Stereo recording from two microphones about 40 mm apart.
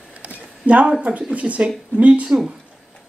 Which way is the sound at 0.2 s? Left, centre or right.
Right.